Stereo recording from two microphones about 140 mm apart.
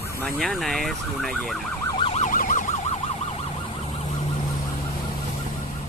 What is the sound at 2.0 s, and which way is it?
Emergency vehicle, 45° left (ahead or behind).